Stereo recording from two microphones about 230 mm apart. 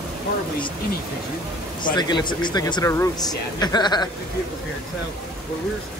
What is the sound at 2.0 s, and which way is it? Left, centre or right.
Speech, centre.